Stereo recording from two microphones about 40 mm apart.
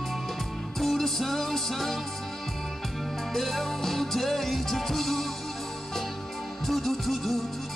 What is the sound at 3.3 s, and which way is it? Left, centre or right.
Music, centre.